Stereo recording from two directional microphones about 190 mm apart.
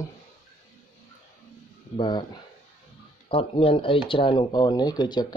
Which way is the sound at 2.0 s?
25° left (ahead or behind).